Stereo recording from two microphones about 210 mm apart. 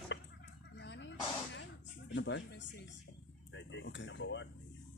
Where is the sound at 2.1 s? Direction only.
60° left (ahead or behind).